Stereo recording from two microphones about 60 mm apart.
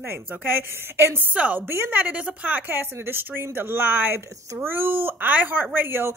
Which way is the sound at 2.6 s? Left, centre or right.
Right.